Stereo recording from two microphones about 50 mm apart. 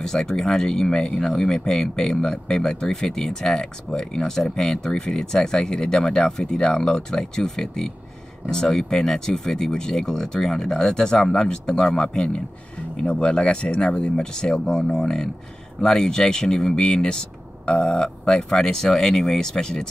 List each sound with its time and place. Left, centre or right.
0.0 s speech: centre